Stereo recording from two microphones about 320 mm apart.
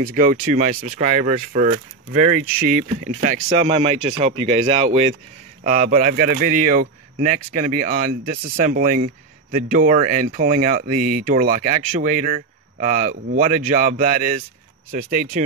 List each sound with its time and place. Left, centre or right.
0.0 s a man's voice: right